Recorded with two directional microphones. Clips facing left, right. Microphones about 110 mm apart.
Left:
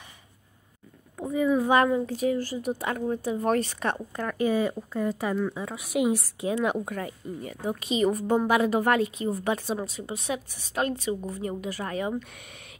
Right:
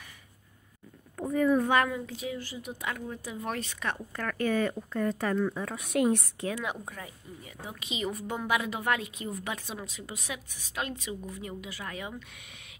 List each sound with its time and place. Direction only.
1.1 s speech: 5° left (ahead or behind)
1.7 s a woman's voice: 30° left (ahead or behind)
3.9 s speech: 20° left (ahead or behind); by 6.3 s 5° left (ahead or behind)
6.6 s a woman's voice: 60° left (ahead or behind); by 12.3 s 45° left (ahead or behind)